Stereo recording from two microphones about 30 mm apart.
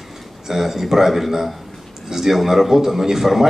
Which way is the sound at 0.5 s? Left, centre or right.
Centre.